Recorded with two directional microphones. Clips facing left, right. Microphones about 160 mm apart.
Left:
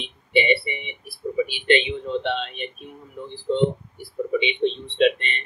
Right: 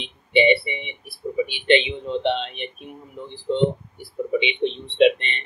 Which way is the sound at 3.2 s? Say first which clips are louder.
Left 1 dB; 15° right (ahead or behind).